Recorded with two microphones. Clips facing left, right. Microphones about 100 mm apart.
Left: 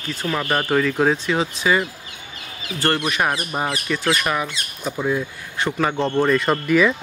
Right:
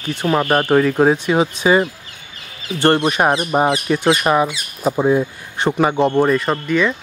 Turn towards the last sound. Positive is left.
turn(degrees=5)  # may be behind; listen again after turning